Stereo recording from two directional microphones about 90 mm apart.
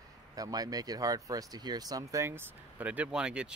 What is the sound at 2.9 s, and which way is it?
Speech, 15° right (ahead or behind).